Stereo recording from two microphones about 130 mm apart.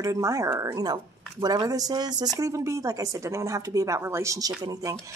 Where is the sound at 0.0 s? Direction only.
25° right (ahead or behind).